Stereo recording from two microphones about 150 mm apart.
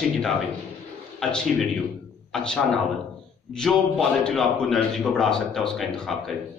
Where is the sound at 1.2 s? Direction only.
5° left (ahead or behind).